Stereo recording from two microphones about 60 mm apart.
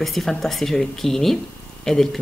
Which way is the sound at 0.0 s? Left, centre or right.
Centre.